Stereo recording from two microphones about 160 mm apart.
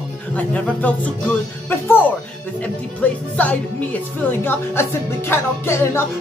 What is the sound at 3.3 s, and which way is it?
Speech, 10° left (ahead or behind).